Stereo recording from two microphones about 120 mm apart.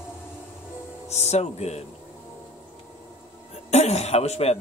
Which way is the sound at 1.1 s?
65° left (ahead or behind).